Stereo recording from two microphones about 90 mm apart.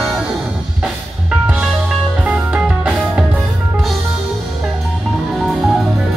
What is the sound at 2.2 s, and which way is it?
Music, 10° right (ahead or behind).